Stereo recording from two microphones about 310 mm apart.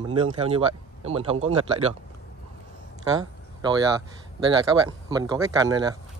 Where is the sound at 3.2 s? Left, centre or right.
Centre.